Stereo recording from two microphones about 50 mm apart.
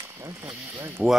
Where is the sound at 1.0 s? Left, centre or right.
Right.